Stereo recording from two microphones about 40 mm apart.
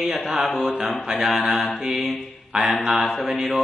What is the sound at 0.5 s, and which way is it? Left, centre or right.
Mantra, left.